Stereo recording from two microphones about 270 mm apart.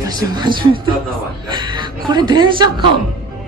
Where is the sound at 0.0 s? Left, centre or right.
Centre.